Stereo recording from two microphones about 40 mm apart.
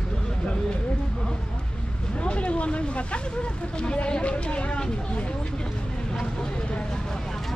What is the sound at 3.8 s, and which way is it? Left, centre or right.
Speech, left.